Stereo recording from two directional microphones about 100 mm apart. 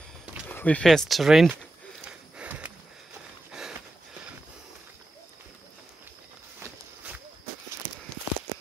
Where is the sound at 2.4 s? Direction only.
15° right (ahead or behind).